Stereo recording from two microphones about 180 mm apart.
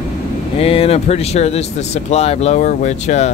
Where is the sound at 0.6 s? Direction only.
35° left (ahead or behind).